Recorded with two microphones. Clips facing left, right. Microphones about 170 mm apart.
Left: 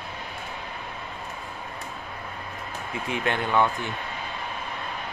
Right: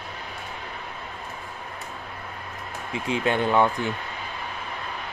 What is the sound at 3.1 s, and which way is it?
Speech, 15° right (ahead or behind).